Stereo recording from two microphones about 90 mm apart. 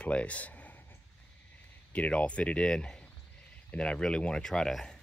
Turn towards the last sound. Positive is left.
turn(degrees=5)  # may be behind; listen again after turning